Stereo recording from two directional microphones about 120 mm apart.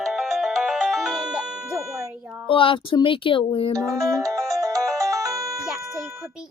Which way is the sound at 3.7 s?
25° right (ahead or behind).